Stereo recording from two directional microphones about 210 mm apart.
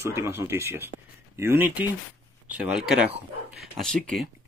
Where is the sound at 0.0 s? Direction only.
10° right (ahead or behind).